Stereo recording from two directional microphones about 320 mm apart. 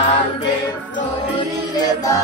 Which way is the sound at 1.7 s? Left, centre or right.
Centre.